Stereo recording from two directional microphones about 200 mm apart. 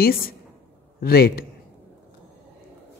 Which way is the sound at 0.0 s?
45° left (ahead or behind).